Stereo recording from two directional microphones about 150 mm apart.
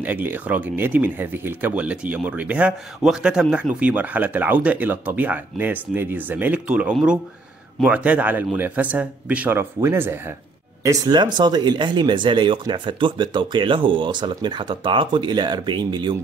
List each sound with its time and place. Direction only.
0.0 s speech: 10° right (ahead or behind); by 16.2 s 30° right (ahead or behind)